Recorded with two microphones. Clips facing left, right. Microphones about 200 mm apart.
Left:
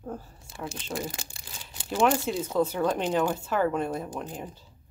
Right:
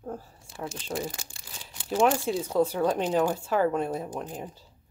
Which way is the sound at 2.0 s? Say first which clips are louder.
Even; centre (ahead or behind).